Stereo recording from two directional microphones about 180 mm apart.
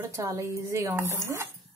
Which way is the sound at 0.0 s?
15° right (ahead or behind).